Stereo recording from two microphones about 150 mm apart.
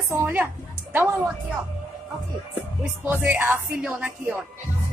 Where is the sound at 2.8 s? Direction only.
10° right (ahead or behind).